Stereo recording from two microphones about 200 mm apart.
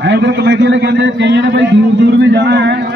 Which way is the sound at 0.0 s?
60° right (ahead or behind).